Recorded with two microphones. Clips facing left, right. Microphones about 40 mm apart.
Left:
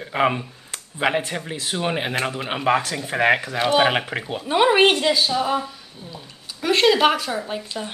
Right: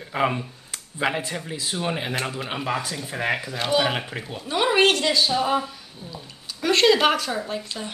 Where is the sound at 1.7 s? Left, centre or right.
Left.